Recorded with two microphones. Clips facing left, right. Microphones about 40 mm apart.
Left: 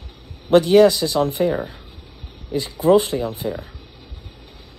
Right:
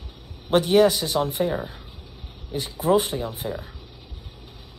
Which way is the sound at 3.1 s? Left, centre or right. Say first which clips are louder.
Left 5 dB; left.